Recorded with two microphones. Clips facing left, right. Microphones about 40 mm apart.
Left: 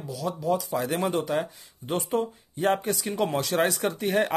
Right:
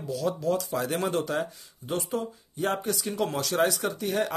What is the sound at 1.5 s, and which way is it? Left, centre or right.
Speech, left.